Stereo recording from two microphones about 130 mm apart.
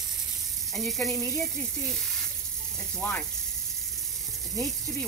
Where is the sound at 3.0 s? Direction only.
15° left (ahead or behind).